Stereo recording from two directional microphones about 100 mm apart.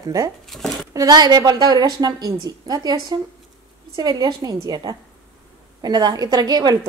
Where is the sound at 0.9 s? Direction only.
40° right (ahead or behind).